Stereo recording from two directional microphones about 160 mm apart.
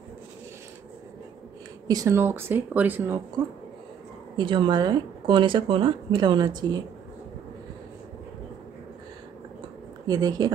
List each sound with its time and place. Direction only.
1.9 s speech: 20° right (ahead or behind)
4.4 s speech: 30° right (ahead or behind)
10.0 s speech: 25° right (ahead or behind)